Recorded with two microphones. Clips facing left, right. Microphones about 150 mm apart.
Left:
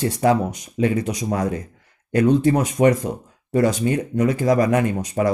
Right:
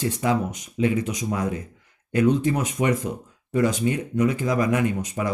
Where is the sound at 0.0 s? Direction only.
40° left (ahead or behind).